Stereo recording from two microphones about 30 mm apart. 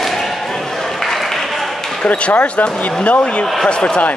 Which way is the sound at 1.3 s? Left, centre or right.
Centre.